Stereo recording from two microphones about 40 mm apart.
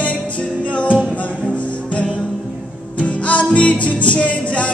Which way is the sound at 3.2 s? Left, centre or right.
Left.